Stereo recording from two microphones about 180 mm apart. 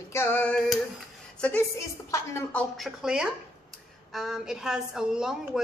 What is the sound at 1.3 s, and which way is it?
Speech, 5° left (ahead or behind).